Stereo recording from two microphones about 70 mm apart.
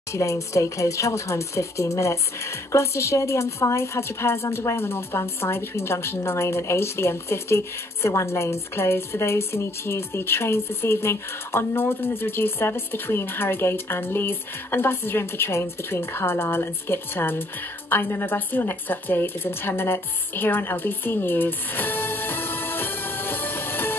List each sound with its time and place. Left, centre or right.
0.1 s speech: left